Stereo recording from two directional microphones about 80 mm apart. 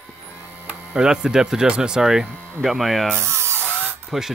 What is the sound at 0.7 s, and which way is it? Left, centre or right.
Speech, centre.